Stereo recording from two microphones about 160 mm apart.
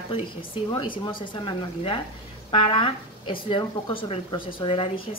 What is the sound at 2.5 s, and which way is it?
Speech, 30° left (ahead or behind).